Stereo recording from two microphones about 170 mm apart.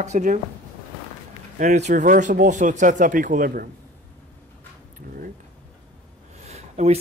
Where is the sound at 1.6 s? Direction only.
45° right (ahead or behind).